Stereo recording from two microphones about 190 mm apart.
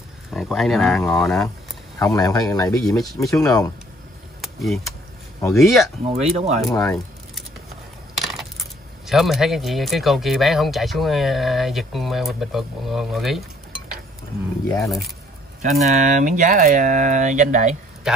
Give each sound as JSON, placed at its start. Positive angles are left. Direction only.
{"t": 0.3, "sound": "speech", "side_deg": 0}
{"t": 2.0, "sound": "speech", "side_deg": 20}
{"t": 4.4, "sound": "speech", "side_deg": 0}
{"t": 6.0, "sound": "speech", "side_deg": -35}
{"t": 6.7, "sound": "speech", "side_deg": 15}
{"t": 8.2, "sound": "speech", "side_deg": 0}
{"t": 14.7, "sound": "speech", "side_deg": 15}
{"t": 15.6, "sound": "speech", "side_deg": -35}
{"t": 18.1, "sound": "speech", "side_deg": 0}